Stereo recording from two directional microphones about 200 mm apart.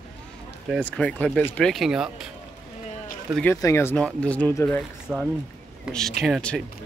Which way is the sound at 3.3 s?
10° left (ahead or behind).